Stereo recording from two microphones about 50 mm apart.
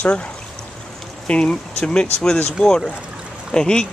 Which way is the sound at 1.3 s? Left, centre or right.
Centre.